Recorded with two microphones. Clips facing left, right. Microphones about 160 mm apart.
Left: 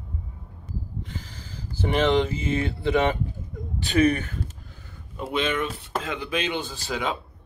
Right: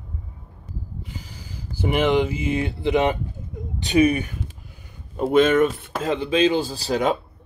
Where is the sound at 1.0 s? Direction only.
10° right (ahead or behind).